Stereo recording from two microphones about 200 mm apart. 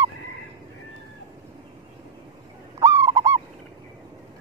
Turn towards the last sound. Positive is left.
turn(degrees=-15)  # may be behind; listen again after turning